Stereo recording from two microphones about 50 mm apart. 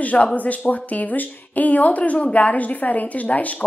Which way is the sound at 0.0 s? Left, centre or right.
Left.